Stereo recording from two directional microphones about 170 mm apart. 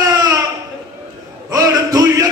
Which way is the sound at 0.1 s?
20° right (ahead or behind).